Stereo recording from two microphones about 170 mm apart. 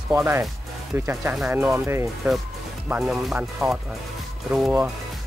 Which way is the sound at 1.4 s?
10° right (ahead or behind).